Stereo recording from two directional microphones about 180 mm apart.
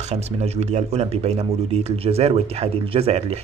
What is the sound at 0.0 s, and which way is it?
Speech, 35° right (ahead or behind).